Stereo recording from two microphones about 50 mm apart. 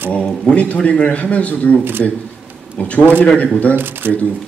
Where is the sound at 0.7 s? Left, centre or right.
Left.